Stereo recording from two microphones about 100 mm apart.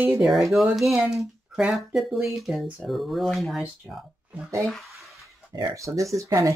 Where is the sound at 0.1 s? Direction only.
Centre (ahead or behind).